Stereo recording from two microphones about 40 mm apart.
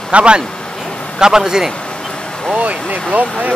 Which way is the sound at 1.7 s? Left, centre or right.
Left.